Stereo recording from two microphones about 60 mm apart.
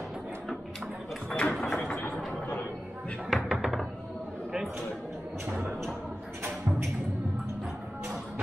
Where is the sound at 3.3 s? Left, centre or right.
Centre.